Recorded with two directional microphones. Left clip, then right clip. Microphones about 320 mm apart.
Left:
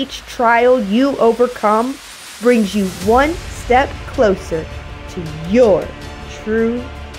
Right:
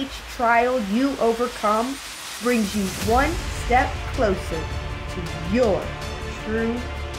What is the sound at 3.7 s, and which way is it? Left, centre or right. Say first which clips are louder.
Speech: left 7 dB; left.